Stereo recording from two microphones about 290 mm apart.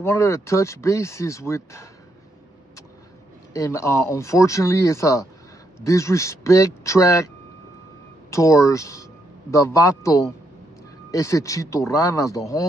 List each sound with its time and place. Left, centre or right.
0.0 s speech: centre
3.5 s speech: centre
8.3 s speech: centre